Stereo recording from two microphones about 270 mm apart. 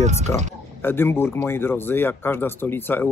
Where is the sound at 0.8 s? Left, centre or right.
Centre.